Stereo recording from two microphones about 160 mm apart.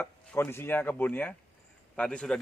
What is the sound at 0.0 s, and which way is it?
A man's voice, 10° left (ahead or behind).